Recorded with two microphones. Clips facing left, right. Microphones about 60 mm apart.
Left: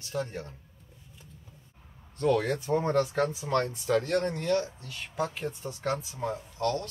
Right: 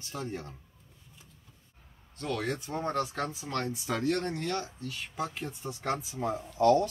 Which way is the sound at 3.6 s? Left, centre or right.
Centre.